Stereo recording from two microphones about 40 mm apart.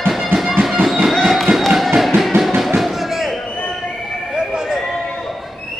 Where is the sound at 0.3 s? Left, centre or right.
Right.